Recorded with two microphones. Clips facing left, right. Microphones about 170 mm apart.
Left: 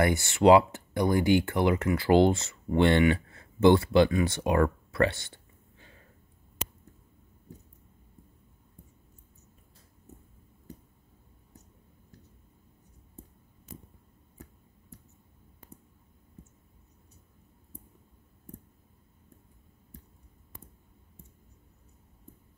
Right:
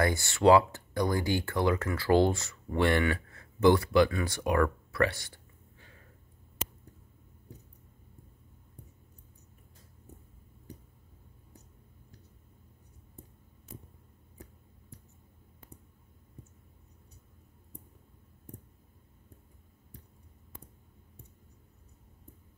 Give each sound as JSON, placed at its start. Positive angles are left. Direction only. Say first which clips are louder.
{"t": 0.0, "sound": "speech", "louder": "left 2 dB", "side_deg": 20}